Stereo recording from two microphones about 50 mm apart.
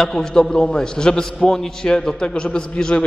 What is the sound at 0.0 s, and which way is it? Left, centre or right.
A man's voice, centre.